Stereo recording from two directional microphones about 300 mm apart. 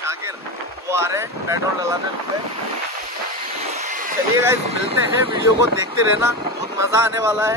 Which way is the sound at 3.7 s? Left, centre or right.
Right.